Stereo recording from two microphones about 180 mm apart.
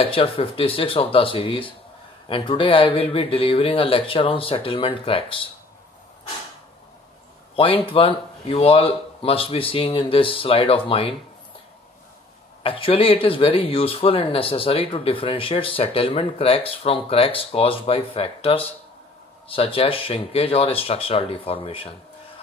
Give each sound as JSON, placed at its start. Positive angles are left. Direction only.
{"t": 0.0, "sound": "speech", "side_deg": 30}
{"t": 7.5, "sound": "speech", "side_deg": 30}
{"t": 12.6, "sound": "speech", "side_deg": 30}